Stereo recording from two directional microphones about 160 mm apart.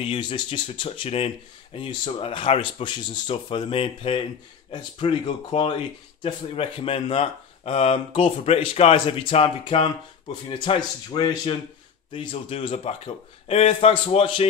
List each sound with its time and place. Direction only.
0.0 s speech: 35° left (ahead or behind)